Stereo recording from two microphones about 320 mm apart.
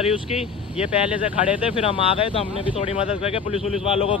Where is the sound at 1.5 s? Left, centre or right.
Centre.